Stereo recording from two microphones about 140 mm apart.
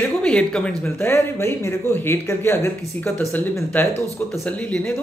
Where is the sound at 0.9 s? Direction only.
15° left (ahead or behind).